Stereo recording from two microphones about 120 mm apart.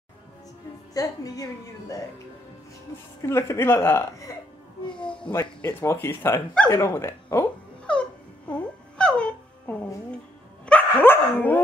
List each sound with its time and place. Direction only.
0.9 s a woman's voice: 30° left (ahead or behind)
3.2 s a woman's voice: 20° left (ahead or behind)
5.3 s a woman's voice: 20° left (ahead or behind)
7.8 s music: 10° left (ahead or behind)
10.6 s dog: 15° left (ahead or behind)